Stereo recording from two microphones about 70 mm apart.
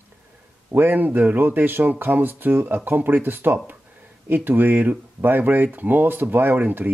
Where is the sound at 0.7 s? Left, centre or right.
Right.